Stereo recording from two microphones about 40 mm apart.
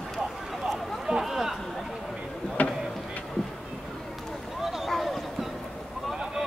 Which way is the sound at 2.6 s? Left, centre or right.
Left.